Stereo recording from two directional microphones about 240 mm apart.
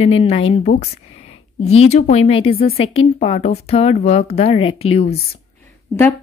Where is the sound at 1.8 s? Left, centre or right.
Left.